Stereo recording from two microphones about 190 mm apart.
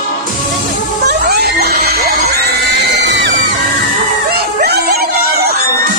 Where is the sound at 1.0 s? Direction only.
55° right (ahead or behind).